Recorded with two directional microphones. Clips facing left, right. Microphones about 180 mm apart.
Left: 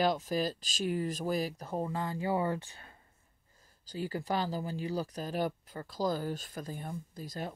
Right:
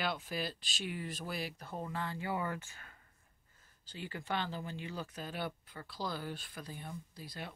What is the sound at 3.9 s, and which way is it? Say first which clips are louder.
Speech: left 6 dB; 35° left (ahead or behind).